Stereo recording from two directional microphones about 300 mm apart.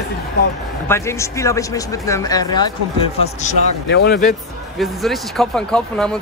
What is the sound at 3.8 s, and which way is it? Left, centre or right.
Speech, left.